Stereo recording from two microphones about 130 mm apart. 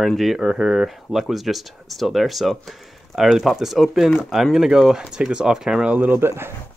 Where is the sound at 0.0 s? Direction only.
Centre (ahead or behind).